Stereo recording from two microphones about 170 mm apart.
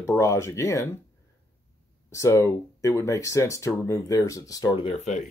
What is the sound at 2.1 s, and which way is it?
Speech, 15° left (ahead or behind).